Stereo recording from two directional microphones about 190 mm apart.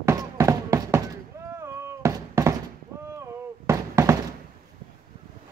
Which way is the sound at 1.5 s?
15° right (ahead or behind).